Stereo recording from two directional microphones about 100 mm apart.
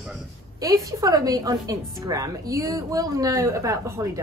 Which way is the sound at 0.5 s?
35° right (ahead or behind).